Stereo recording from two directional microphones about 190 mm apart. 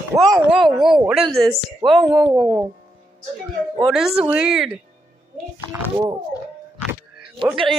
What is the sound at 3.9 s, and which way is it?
Speech, 5° right (ahead or behind).